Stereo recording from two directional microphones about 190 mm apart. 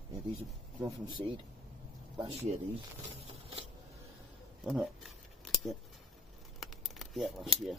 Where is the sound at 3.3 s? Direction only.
30° right (ahead or behind).